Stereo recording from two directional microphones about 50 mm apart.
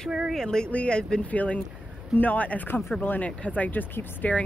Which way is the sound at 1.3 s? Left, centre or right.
Left.